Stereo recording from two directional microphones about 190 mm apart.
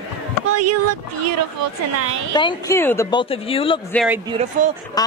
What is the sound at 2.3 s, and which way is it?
Speech, 20° left (ahead or behind).